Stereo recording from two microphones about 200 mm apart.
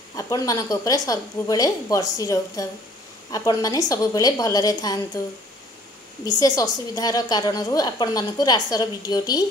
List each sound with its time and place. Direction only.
0.1 s a woman's voice: 15° left (ahead or behind)
6.2 s a woman's voice: 20° left (ahead or behind)